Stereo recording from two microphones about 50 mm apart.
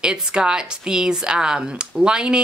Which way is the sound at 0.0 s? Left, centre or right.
Centre.